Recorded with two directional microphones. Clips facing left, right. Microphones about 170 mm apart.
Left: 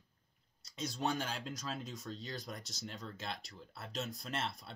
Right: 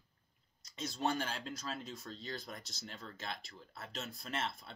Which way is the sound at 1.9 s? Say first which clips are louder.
Left 1 dB; 40° left (ahead or behind).